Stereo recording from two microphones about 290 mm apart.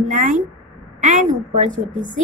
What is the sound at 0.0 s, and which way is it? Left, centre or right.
Speech, right.